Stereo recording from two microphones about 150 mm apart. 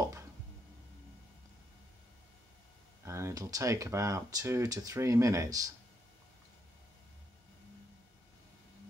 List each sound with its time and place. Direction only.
3.1 s speech: 20° right (ahead or behind)